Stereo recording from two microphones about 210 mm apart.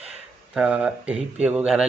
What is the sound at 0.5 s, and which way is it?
Speech, 5° right (ahead or behind).